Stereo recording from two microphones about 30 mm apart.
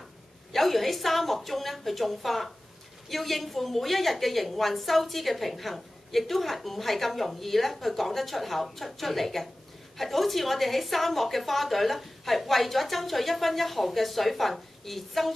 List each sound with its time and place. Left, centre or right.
0.5 s a woman's voice: centre